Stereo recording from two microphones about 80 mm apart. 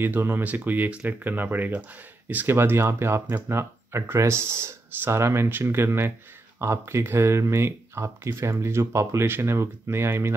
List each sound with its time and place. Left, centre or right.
0.0 s speech: right